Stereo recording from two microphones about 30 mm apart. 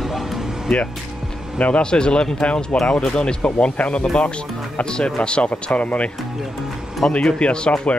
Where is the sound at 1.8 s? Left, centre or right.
Left.